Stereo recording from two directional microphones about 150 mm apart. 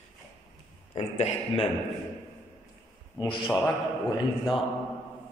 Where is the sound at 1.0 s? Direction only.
45° left (ahead or behind).